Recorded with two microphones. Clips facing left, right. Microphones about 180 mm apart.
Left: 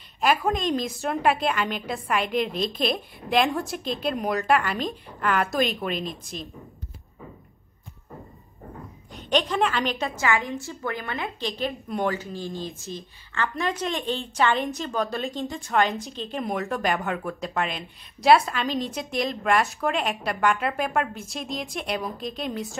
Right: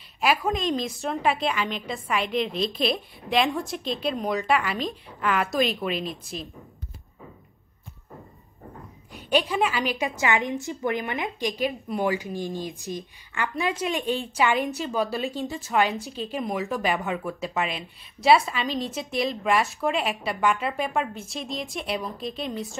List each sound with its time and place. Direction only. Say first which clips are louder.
0.2 s a woman's voice: left 1 dB; centre (ahead or behind)
9.3 s a woman's voice: even; 5° right (ahead or behind)